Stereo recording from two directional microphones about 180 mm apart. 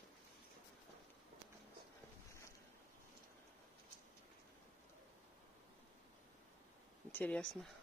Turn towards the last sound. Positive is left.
turn(degrees=5)  # may be behind; listen again after turning